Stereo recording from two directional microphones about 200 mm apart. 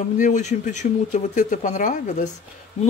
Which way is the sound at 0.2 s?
35° left (ahead or behind).